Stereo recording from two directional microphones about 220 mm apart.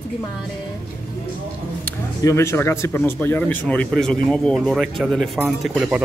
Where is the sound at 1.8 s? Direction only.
15° left (ahead or behind).